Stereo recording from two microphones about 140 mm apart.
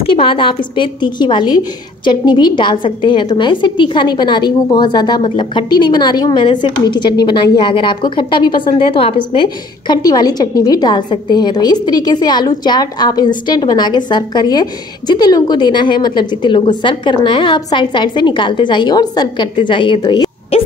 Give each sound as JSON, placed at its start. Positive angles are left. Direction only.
{"t": 0.0, "sound": "a woman's voice", "side_deg": 40}